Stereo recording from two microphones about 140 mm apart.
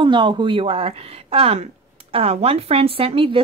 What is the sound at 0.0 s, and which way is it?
Speech, 35° right (ahead or behind).